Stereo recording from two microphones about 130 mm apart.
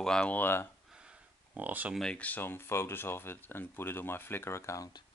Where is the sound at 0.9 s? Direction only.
10° right (ahead or behind).